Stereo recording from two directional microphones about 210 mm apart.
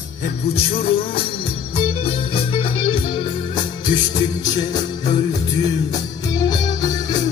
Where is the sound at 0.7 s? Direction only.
25° left (ahead or behind).